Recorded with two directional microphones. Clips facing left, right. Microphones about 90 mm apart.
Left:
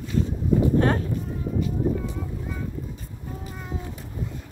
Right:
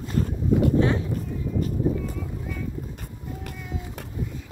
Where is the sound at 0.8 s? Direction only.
50° left (ahead or behind).